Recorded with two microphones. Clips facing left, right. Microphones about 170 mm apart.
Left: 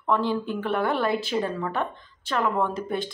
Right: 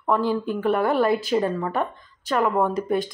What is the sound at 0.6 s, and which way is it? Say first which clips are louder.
Speech: right 6 dB; 5° right (ahead or behind).